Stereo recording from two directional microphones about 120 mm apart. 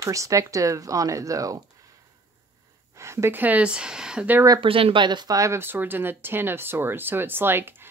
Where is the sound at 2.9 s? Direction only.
25° right (ahead or behind).